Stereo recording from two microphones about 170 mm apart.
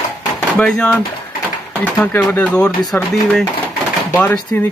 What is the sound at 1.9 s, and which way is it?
Speech, 5° left (ahead or behind).